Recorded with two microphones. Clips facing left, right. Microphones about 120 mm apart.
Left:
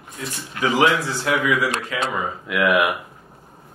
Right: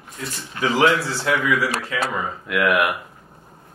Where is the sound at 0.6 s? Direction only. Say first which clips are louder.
Even; 15° left (ahead or behind).